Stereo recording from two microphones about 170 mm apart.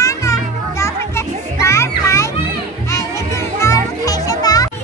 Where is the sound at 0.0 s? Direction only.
20° left (ahead or behind).